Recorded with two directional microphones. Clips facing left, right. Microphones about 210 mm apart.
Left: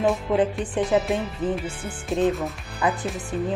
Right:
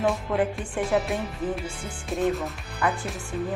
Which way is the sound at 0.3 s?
15° left (ahead or behind).